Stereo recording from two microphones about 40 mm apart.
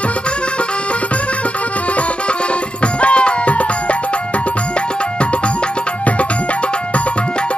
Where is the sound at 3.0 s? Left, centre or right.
Left.